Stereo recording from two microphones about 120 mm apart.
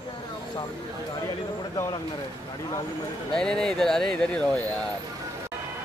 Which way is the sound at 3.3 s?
5° left (ahead or behind).